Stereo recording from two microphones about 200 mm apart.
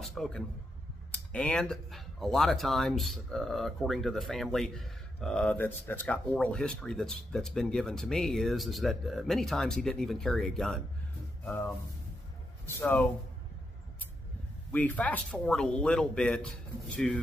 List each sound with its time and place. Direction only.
0.0 s a sound: centre (ahead or behind)
1.1 s speech: 5° left (ahead or behind)
14.7 s speech: 10° left (ahead or behind)